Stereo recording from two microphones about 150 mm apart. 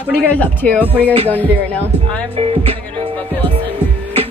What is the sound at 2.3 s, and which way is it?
Music, 40° right (ahead or behind).